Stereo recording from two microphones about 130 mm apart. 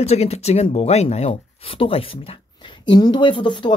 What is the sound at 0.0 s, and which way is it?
Speech, 55° left (ahead or behind).